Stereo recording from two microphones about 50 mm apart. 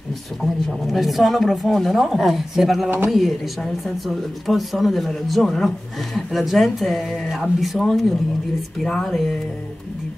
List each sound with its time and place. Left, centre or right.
0.4 s speech: centre
9.0 s music: centre